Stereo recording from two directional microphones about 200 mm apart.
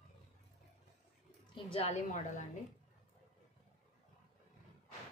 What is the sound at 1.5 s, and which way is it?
Speech, 30° left (ahead or behind).